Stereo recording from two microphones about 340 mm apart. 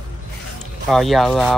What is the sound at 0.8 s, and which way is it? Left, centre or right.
Speech, centre.